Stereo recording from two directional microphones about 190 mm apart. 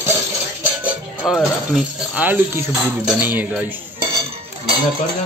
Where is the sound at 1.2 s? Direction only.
Centre (ahead or behind).